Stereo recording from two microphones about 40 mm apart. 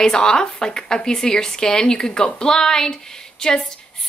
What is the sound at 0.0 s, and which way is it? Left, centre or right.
Speech, left.